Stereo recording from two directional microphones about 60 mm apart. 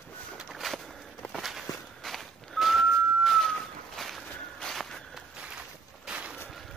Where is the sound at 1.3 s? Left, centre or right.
Centre.